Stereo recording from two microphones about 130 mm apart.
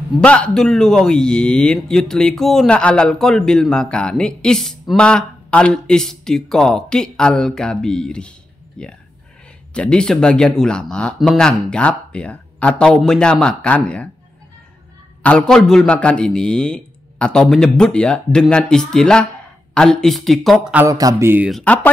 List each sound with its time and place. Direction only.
0.2 s a man's voice: 10° left (ahead or behind)
15.2 s a man's voice: 5° left (ahead or behind)
20.8 s speech: 25° right (ahead or behind)
21.5 s a man's voice: 5° left (ahead or behind)